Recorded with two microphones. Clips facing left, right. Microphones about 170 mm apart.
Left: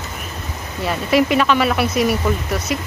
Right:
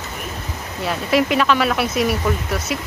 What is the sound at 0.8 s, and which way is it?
Speech, centre (ahead or behind).